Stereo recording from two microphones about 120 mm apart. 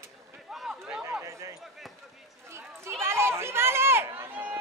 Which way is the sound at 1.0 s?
20° right (ahead or behind).